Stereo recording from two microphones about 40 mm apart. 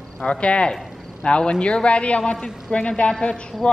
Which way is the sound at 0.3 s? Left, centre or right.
Left.